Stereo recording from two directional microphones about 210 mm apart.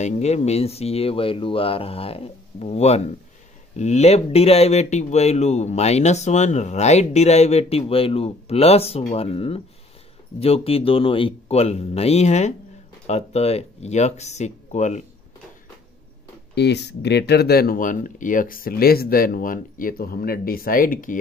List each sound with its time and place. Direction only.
0.0 s speech: 30° left (ahead or behind)
16.5 s speech: 55° left (ahead or behind)